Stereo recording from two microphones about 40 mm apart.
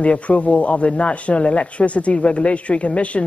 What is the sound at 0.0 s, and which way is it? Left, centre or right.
A man's voice, left.